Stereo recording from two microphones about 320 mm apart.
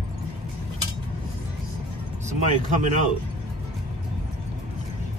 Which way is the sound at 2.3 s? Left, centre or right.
Right.